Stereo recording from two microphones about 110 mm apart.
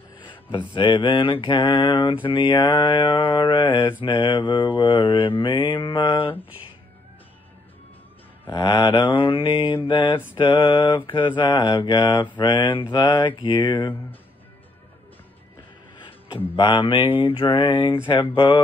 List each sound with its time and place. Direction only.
0.5 s mantra: 45° left (ahead or behind)
3.6 s speech: 40° left (ahead or behind)
4.2 s mantra: 45° left (ahead or behind)
8.5 s mantra: 40° left (ahead or behind)
11.1 s speech: 45° left (ahead or behind)
16.5 s mantra: 45° left (ahead or behind)